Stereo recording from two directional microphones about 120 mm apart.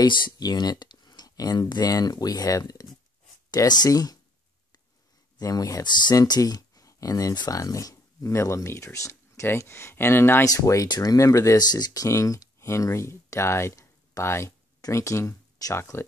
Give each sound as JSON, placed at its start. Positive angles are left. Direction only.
{"t": 0.0, "sound": "speech", "side_deg": 40}
{"t": 5.4, "sound": "speech", "side_deg": 30}